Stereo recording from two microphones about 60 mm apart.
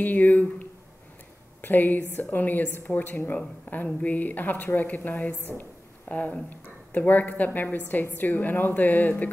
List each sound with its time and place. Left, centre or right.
0.0 s a woman's voice: left
5.3 s a woman's voice: right
5.6 s a sound: left
6.5 s a woman's voice: left